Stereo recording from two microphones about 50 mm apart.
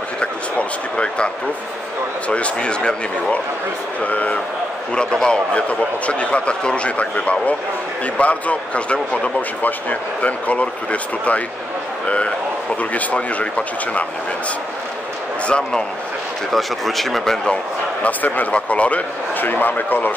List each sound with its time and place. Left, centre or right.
0.2 s a man's voice: left
4.0 s a man's voice: left
4.9 s a man's voice: centre
9.6 s a man's voice: left
12.9 s a man's voice: left
15.4 s a man's voice: centre
16.5 s speech: centre
18.0 s a man's voice: left